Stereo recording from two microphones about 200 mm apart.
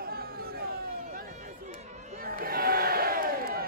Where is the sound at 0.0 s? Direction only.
50° right (ahead or behind).